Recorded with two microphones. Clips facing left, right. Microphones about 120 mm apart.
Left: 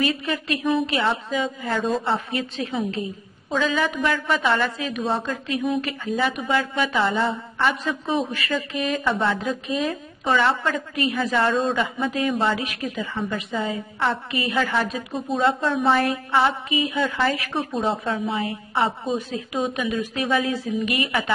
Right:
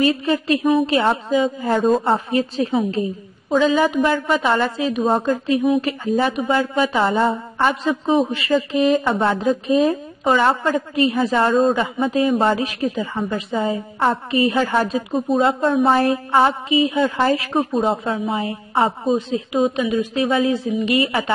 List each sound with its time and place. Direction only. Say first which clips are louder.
0.1 s a woman's voice: right 7 dB; 35° right (ahead or behind)
5.0 s a woman's voice: right 7 dB; 40° right (ahead or behind)
8.0 s a woman's voice: right 6 dB; 30° right (ahead or behind)
19.3 s a woman's voice: right 7 dB; 15° right (ahead or behind)